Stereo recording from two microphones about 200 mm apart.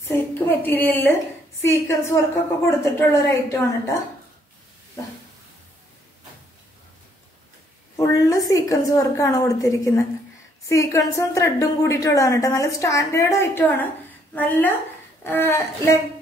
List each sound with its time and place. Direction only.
0.3 s a woman's voice: 10° left (ahead or behind)
7.9 s a woman's voice: 15° left (ahead or behind)